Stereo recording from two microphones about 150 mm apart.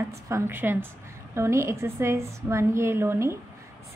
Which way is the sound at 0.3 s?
15° right (ahead or behind).